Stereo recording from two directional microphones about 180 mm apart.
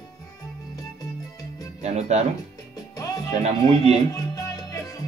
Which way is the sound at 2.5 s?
20° left (ahead or behind).